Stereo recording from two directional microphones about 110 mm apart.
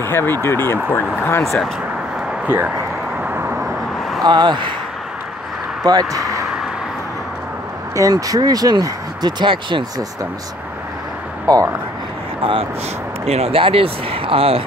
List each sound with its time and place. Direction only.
0.0 s speech: 20° left (ahead or behind)
1.4 s speech: centre (ahead or behind)
2.4 s speech: 20° right (ahead or behind)
3.2 s vehicle: 15° right (ahead or behind)
4.2 s speech: 40° right (ahead or behind)
5.9 s speech: 35° right (ahead or behind)
7.9 s speech: 30° right (ahead or behind); by 9.8 s 50° right (ahead or behind)
11.4 s speech: 35° right (ahead or behind)
12.4 s speech: 55° right (ahead or behind)
13.2 s speech: 70° right (ahead or behind)